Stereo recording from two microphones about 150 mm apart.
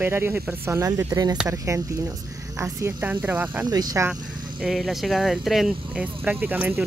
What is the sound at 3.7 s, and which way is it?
Speech, 25° right (ahead or behind).